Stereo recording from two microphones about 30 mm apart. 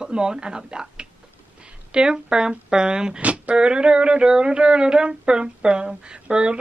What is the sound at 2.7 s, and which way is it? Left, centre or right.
Speech, right.